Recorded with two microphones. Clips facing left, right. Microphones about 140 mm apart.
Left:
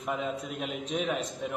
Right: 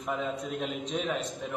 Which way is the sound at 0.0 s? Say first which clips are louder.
Even; centre (ahead or behind).